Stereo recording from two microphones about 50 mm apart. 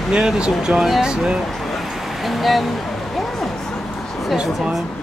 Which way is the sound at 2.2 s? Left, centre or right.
Centre.